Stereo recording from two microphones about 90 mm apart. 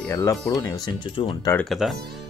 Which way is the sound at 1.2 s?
90° left.